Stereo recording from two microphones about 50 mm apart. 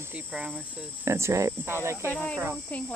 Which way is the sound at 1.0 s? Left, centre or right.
Right.